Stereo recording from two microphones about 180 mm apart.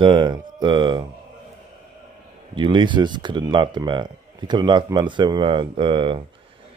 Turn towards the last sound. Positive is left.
turn(degrees=-30)  # may be behind; listen again after turning